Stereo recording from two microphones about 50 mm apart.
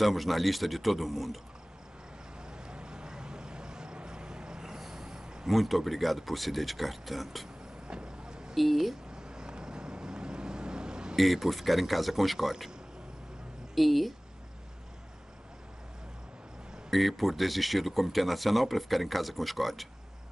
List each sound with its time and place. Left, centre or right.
0.0 s speech: centre
2.4 s vehicle: centre
5.5 s speech: centre
7.9 s vehicle: centre
8.5 s speech: centre
9.1 s vehicle: centre
11.1 s speech: centre
13.7 s speech: centre
16.9 s speech: centre